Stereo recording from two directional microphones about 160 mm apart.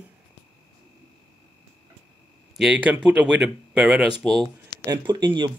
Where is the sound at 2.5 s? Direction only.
5° right (ahead or behind).